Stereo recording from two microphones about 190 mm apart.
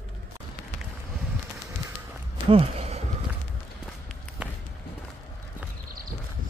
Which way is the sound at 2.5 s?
30° right (ahead or behind).